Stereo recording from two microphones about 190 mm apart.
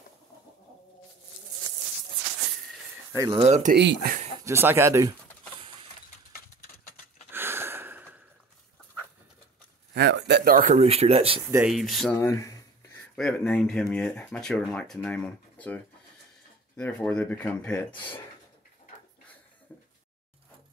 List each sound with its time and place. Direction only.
3.2 s speech: 25° right (ahead or behind)
3.4 s speech: 35° right (ahead or behind)
3.7 s speech: 60° right (ahead or behind)
4.5 s speech: 15° right (ahead or behind)
7.2 s gasp: 10° right (ahead or behind)
9.9 s speech: 65° right (ahead or behind)
10.8 s speech: 35° right (ahead or behind)
11.6 s speech: centre (ahead or behind)
12.2 s speech: 15° left (ahead or behind)
19.7 s a sound: 10° left (ahead or behind)